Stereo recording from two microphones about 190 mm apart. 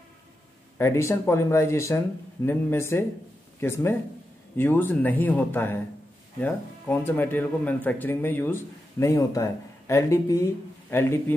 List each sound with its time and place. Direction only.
0.7 s speech: 15° left (ahead or behind)